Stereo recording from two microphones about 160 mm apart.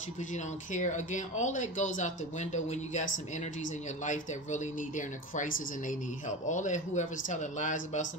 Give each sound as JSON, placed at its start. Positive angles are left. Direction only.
{"t": 0.2, "sound": "speech", "side_deg": 50}